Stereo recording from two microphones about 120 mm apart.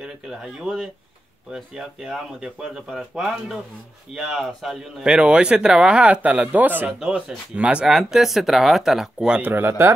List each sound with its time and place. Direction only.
0.0 s speech: 5° right (ahead or behind)
9.4 s speech: 15° right (ahead or behind)